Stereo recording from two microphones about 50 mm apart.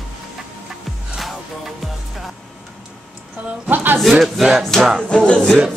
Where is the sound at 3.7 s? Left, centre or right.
Right.